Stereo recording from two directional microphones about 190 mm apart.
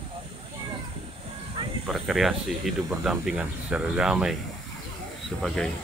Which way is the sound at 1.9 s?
Centre (ahead or behind).